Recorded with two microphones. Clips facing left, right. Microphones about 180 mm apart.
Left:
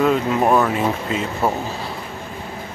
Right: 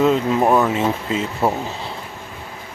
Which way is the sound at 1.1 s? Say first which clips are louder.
Right 1 dB; 25° right (ahead or behind).